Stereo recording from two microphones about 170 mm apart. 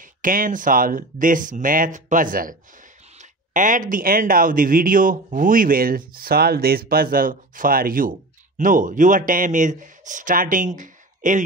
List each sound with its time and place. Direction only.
0.0 s speech: 55° right (ahead or behind)